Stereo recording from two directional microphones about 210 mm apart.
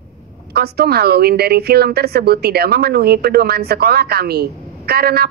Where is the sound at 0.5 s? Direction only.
50° right (ahead or behind).